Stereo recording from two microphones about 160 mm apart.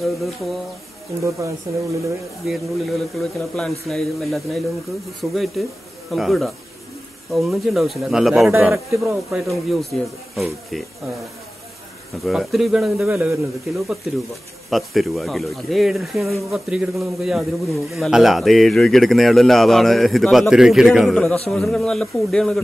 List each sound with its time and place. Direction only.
0.0 s a man's voice: centre (ahead or behind)
1.7 s speech: 20° right (ahead or behind)
2.4 s a man's voice: centre (ahead or behind)
8.5 s a man's voice: 10° right (ahead or behind)
9.3 s a man's voice: centre (ahead or behind)
12.2 s a man's voice: centre (ahead or behind)
13.1 s a man's voice: 15° right (ahead or behind)
13.7 s a man's voice: centre (ahead or behind)